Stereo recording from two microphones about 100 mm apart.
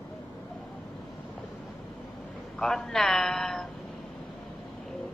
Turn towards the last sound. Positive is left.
turn(degrees=5)  # may be behind; listen again after turning